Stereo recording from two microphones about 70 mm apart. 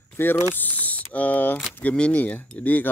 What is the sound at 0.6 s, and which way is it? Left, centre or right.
Mechanisms, left.